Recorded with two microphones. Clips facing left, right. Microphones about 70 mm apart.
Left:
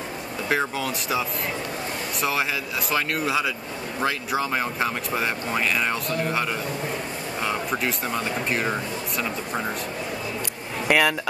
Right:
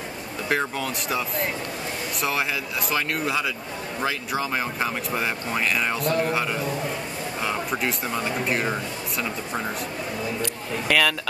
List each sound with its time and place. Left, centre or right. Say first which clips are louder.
0.5 s speech: left 1 dB; centre
2.9 s speech: left 1 dB; centre
7.4 s speech: even; centre
10.9 s speech: left 2 dB; centre